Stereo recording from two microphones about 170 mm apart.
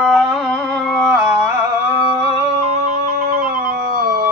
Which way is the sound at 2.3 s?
40° right (ahead or behind).